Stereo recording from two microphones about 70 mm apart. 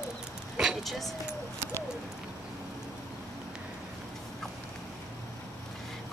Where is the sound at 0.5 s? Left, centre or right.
Centre.